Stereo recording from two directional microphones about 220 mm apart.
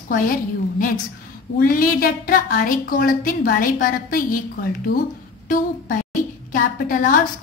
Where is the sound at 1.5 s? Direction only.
40° left (ahead or behind).